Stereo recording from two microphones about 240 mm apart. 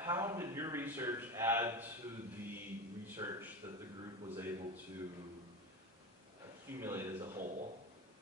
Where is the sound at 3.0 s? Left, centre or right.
Centre.